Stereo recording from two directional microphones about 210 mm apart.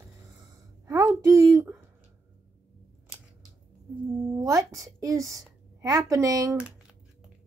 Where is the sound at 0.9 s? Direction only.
15° right (ahead or behind).